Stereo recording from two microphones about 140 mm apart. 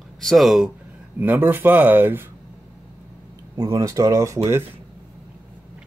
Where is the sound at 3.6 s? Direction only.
25° right (ahead or behind).